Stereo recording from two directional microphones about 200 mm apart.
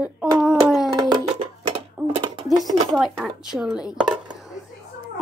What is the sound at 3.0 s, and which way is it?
A woman's voice, centre (ahead or behind).